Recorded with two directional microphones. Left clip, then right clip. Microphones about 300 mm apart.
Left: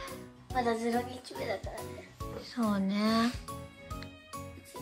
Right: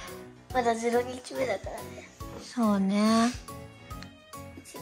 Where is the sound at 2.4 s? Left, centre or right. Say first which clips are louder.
Right 5 dB; centre.